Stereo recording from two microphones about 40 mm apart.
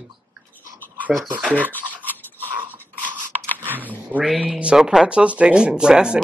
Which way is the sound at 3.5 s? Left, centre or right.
Right.